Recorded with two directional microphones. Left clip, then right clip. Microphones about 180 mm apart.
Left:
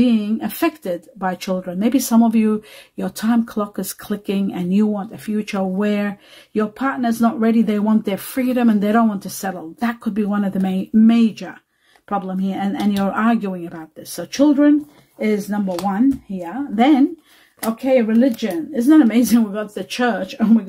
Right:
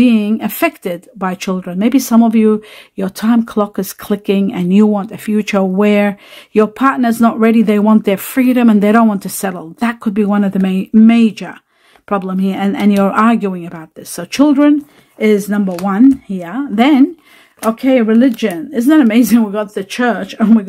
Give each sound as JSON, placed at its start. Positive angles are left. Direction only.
{"t": 0.0, "sound": "speech", "side_deg": -45}